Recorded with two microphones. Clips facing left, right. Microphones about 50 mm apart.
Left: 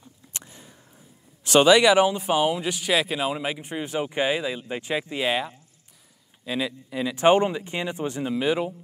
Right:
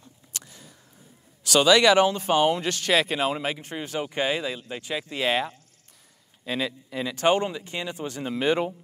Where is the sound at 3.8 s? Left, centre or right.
Centre.